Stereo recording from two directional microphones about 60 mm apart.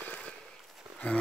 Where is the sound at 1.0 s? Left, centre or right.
Left.